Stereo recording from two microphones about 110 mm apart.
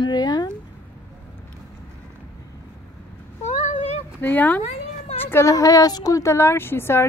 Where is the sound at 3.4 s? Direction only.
90° left.